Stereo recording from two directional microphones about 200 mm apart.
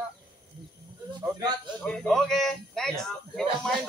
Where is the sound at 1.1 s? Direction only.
20° right (ahead or behind).